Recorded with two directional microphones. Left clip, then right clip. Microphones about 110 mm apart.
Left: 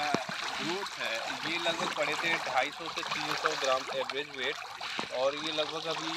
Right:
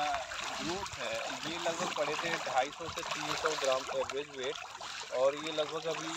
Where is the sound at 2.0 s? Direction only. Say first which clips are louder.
Left 3 dB; 90° right.